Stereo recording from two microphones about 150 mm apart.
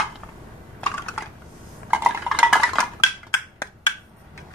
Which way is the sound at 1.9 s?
5° right (ahead or behind).